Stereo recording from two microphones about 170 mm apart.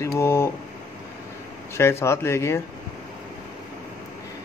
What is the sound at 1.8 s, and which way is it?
Speech, 15° left (ahead or behind).